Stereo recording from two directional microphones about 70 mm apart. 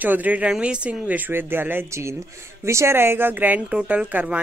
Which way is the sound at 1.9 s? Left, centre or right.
Right.